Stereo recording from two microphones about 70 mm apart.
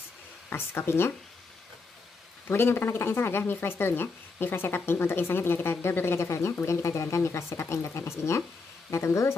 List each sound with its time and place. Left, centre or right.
0.5 s speech: left
2.4 s speech: left